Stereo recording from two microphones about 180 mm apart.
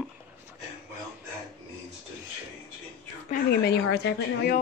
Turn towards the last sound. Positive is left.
turn(degrees=65)  # may be behind; listen again after turning